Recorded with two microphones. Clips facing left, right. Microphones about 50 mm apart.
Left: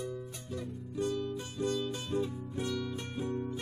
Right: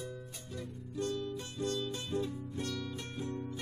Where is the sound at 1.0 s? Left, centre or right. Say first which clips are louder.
Left 3 dB; centre.